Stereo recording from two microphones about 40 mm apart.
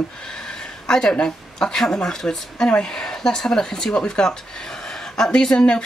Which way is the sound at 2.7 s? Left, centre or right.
Left.